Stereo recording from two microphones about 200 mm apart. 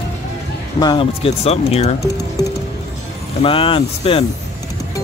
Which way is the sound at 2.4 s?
20° left (ahead or behind).